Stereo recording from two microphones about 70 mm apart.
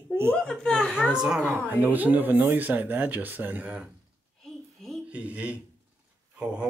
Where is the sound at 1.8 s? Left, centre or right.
Right.